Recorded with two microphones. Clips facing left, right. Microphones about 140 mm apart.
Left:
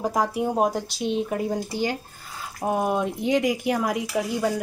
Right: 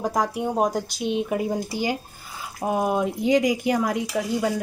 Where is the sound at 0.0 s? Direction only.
5° left (ahead or behind).